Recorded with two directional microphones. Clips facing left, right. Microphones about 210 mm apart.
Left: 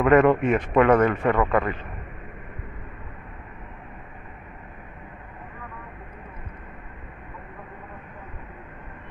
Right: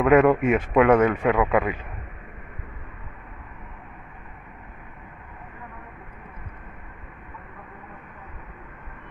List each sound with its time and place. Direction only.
0.0 s a man's voice: 5° right (ahead or behind)